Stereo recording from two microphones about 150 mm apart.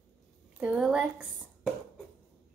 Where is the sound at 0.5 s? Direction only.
10° right (ahead or behind).